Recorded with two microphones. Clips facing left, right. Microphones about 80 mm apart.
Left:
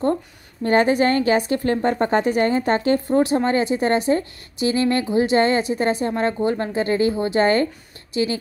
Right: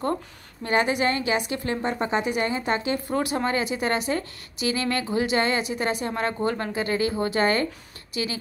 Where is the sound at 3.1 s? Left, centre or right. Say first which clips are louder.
Left 6 dB; left.